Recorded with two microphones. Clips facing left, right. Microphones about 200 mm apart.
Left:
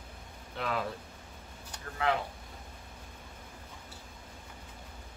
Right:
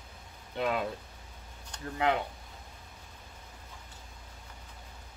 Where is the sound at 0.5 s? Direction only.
20° right (ahead or behind).